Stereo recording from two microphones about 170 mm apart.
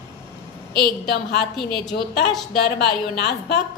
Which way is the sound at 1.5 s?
Centre (ahead or behind).